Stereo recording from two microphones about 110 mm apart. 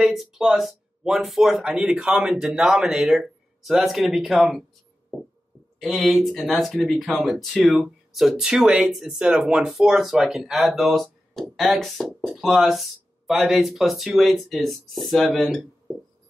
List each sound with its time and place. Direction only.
0.0 s speech: centre (ahead or behind)
5.8 s speech: centre (ahead or behind)